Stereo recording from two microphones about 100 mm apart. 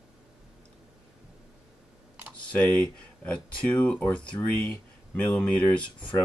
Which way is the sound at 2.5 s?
15° left (ahead or behind).